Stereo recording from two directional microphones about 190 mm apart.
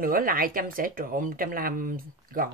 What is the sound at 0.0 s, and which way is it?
Speech, 50° right (ahead or behind).